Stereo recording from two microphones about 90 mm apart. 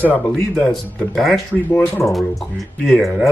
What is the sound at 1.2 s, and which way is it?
Speech, centre (ahead or behind).